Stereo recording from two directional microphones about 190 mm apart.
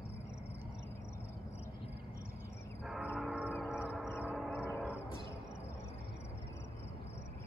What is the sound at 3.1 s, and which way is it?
Train, 5° right (ahead or behind).